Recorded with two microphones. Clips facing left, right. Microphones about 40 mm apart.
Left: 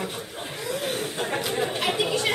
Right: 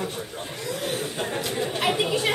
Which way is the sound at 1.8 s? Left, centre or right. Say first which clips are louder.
Right 5 dB; centre.